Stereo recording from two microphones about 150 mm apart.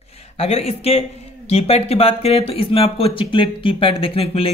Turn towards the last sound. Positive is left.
turn(degrees=40)  # may be behind; listen again after turning